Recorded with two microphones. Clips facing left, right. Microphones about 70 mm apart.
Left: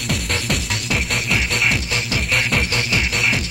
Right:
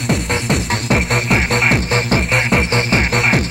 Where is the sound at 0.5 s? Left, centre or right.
Right.